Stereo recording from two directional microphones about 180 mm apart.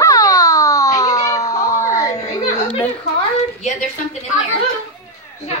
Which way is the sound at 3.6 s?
40° left (ahead or behind).